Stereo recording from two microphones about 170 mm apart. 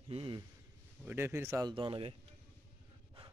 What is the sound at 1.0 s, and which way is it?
Speech, 10° right (ahead or behind).